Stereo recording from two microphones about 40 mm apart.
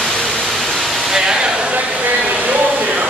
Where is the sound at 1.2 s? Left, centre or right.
Centre.